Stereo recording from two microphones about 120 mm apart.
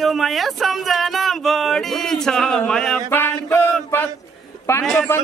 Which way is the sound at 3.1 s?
15° left (ahead or behind).